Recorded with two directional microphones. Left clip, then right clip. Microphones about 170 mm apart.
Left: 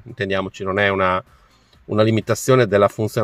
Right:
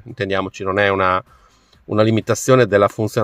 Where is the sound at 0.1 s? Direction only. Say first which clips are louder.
Right 2 dB; 10° right (ahead or behind).